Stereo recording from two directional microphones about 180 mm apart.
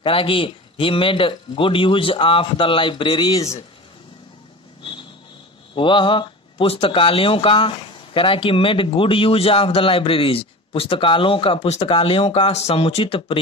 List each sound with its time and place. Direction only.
0.0 s speech: 30° left (ahead or behind)
5.8 s speech: 25° left (ahead or behind)